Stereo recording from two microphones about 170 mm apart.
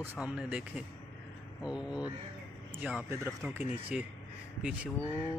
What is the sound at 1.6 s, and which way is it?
Speech, 5° right (ahead or behind).